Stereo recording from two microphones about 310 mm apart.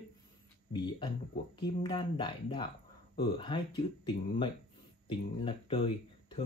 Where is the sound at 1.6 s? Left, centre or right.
Centre.